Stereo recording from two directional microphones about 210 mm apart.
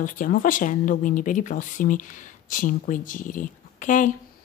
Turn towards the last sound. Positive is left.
turn(degrees=35)  # may be behind; listen again after turning